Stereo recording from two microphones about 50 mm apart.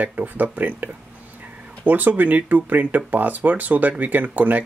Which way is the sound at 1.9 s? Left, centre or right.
Right.